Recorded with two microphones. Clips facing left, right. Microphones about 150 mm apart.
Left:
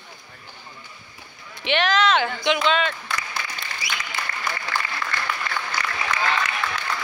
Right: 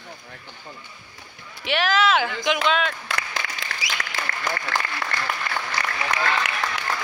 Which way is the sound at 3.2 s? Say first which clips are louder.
Right 1 dB; 75° right (ahead or behind).